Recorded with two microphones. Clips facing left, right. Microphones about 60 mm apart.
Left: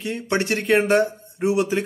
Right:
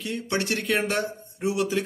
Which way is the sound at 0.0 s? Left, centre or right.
Left.